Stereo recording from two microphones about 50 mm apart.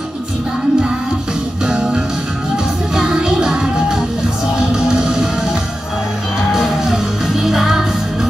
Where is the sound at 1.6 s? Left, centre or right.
Centre.